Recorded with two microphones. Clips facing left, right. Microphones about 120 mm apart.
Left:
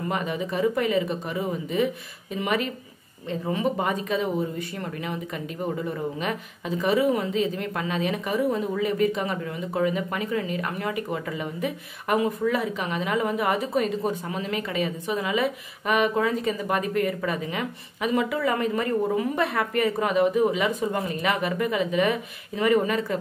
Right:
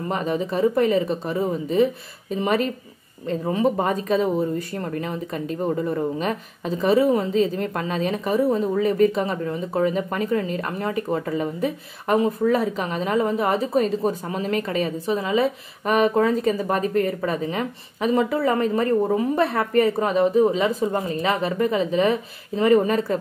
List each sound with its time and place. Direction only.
0.1 s speech: 35° right (ahead or behind)